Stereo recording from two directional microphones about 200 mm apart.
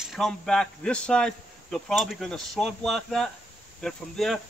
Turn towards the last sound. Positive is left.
turn(degrees=0)  # may be behind; listen again after turning